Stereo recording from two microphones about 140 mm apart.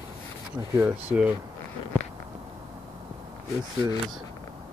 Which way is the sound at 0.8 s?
15° right (ahead or behind).